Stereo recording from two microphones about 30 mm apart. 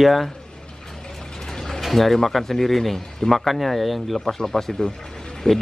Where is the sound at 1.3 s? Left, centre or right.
Left.